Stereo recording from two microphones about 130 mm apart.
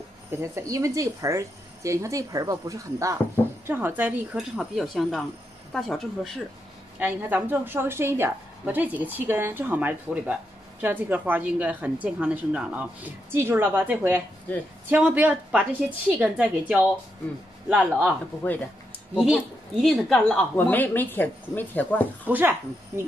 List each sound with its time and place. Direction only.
0.3 s a woman's voice: 20° right (ahead or behind)
4.4 s a woman's voice: centre (ahead or behind)
7.0 s a woman's voice: 15° right (ahead or behind)
14.5 s speech: 10° left (ahead or behind)
14.9 s a woman's voice: 10° right (ahead or behind)
19.1 s a woman's voice: centre (ahead or behind)
20.5 s speech: 15° left (ahead or behind)
22.3 s a woman's voice: 15° right (ahead or behind)